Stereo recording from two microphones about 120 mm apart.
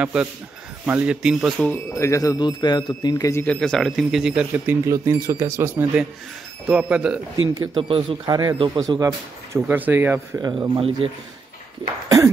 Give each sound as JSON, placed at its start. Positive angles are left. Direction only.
{"t": 0.0, "sound": "speech", "side_deg": -10}
{"t": 2.0, "sound": "a man's voice", "side_deg": 25}
{"t": 3.4, "sound": "speech", "side_deg": 5}
{"t": 4.8, "sound": "speech", "side_deg": -25}
{"t": 6.7, "sound": "speech", "side_deg": -10}
{"t": 7.7, "sound": "speech", "side_deg": -50}
{"t": 8.3, "sound": "speech", "side_deg": -35}
{"t": 9.7, "sound": "speech", "side_deg": -15}
{"t": 10.5, "sound": "speech", "side_deg": -40}
{"t": 11.8, "sound": "speech", "side_deg": -30}